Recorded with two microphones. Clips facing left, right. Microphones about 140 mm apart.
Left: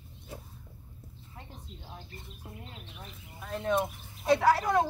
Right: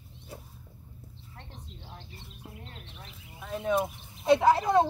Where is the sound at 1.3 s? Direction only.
5° left (ahead or behind).